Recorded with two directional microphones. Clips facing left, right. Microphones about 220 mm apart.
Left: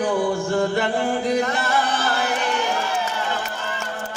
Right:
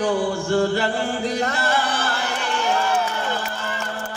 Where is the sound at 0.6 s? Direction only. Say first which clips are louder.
Right 1 dB; 30° right (ahead or behind).